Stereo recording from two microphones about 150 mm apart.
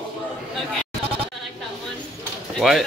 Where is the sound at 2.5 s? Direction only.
Centre (ahead or behind).